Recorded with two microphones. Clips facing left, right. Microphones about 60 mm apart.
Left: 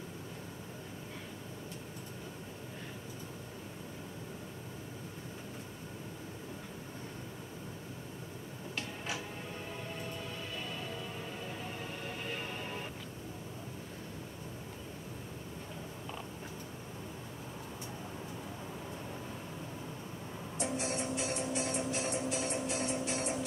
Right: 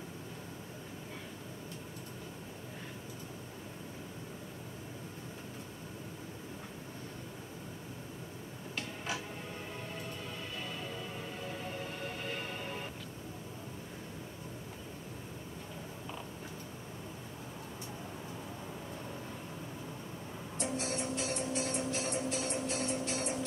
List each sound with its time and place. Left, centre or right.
10.6 s music: centre
20.5 s music: centre